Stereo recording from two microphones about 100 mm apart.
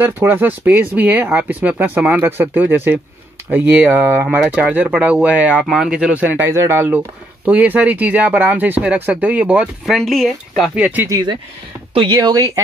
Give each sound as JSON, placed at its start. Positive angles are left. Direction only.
{"t": 0.0, "sound": "speech", "side_deg": -20}
{"t": 5.6, "sound": "speech", "side_deg": 0}
{"t": 9.9, "sound": "speech", "side_deg": 0}
{"t": 10.8, "sound": "speech", "side_deg": -15}
{"t": 11.1, "sound": "speech", "side_deg": -35}
{"t": 11.9, "sound": "speech", "side_deg": -50}